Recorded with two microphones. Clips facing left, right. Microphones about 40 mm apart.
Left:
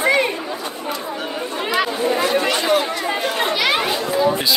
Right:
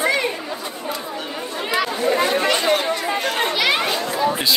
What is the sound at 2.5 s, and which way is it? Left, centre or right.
Chatter, centre.